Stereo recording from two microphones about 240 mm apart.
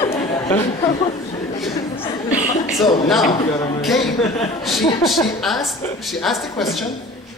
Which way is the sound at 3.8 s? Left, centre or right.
Centre.